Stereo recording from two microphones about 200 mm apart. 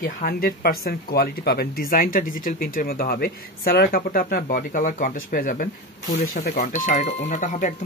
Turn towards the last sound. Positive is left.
turn(degrees=40)  # may be behind; listen again after turning